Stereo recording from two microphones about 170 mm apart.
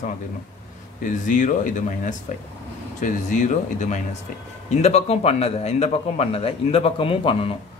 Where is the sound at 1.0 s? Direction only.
50° left (ahead or behind).